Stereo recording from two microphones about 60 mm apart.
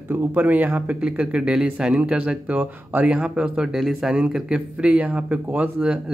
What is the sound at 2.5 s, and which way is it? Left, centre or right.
Speech, right.